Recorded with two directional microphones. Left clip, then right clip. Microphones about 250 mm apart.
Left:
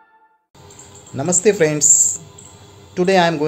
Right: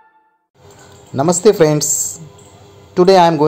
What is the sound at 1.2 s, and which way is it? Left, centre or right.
Speech, centre.